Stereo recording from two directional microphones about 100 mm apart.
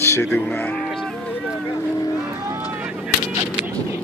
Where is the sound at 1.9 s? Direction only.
35° left (ahead or behind).